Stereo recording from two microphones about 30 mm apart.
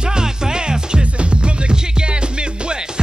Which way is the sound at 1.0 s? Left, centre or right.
Right.